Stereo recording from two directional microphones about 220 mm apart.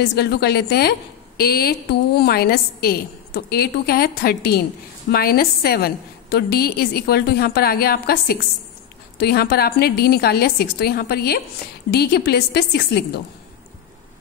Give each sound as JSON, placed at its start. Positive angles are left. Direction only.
{"t": 0.0, "sound": "a woman's voice", "side_deg": 50}